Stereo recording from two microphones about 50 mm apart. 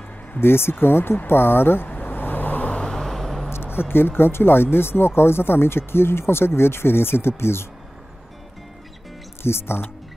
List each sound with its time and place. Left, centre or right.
0.4 s speech: left
1.9 s vehicle: left
2.8 s vehicle: centre
3.5 s speech: left
9.4 s speech: left